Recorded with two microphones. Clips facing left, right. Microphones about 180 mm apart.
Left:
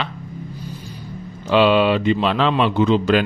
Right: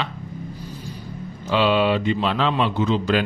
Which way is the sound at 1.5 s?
70° left (ahead or behind).